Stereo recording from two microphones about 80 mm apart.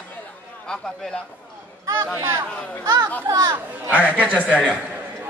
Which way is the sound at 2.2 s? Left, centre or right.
Right.